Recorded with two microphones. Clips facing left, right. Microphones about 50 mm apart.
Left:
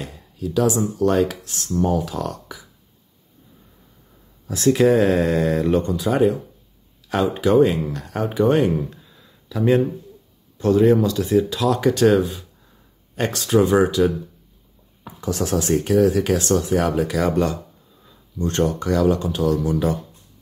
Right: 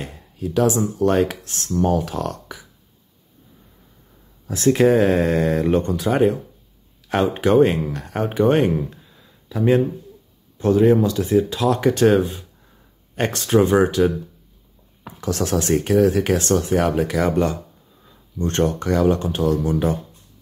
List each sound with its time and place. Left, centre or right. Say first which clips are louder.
0.0 s speech: even; right
4.7 s speech: right 1 dB; right
10.6 s speech: even; right
15.0 s speech: right 1 dB; right